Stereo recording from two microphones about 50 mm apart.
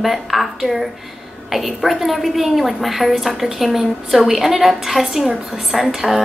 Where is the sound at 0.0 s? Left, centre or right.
Centre.